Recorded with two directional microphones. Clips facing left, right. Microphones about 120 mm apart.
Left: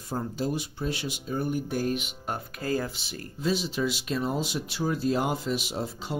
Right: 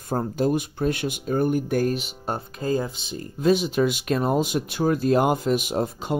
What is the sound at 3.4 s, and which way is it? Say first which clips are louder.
Speech: right 8 dB; 55° right (ahead or behind).